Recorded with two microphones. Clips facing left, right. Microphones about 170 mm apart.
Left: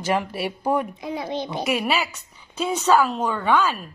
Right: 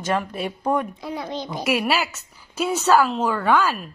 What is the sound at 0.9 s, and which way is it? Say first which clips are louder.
Speech: left 1 dB; 20° left (ahead or behind).